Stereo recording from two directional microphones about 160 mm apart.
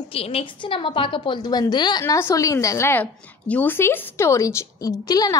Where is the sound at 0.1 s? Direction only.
35° left (ahead or behind).